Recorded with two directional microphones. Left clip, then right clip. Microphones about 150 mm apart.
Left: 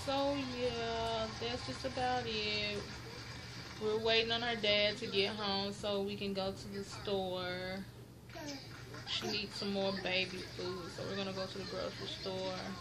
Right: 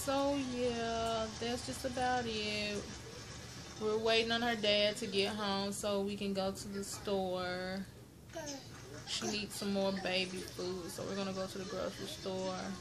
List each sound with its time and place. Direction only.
0.1 s a sound: 20° right (ahead or behind)
2.0 s speech: 20° right (ahead or behind)
3.8 s speech: 20° right (ahead or behind)
9.1 s speech: 20° right (ahead or behind)
11.8 s speech: 20° right (ahead or behind)